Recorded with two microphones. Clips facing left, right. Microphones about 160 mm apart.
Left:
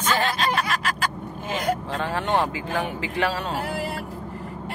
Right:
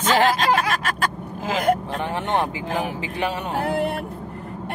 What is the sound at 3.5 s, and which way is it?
Music, 55° right (ahead or behind).